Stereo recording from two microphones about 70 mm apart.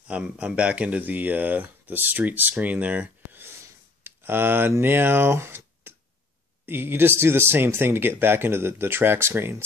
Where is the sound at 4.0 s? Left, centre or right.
Right.